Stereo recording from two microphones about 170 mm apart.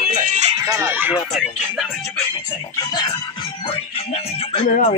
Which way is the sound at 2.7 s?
20° left (ahead or behind).